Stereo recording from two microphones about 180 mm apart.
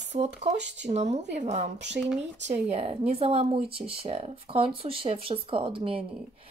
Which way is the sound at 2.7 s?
35° right (ahead or behind).